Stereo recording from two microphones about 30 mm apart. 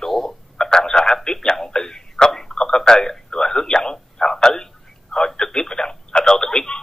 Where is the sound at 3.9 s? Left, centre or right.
Centre.